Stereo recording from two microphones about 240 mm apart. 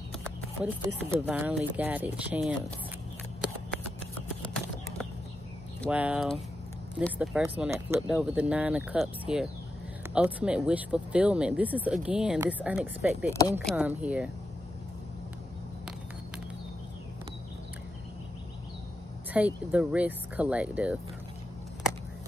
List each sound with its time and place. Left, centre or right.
0.6 s speech: centre
5.9 s speech: centre
13.3 s speech: centre
13.7 s speech: centre
19.3 s speech: centre